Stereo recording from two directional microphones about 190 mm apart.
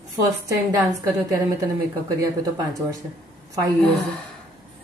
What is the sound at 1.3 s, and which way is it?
Speech, 15° right (ahead or behind).